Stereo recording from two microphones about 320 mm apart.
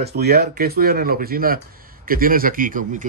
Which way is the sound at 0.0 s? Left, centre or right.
Right.